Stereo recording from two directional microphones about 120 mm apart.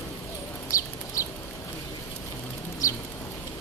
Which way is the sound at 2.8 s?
30° left (ahead or behind).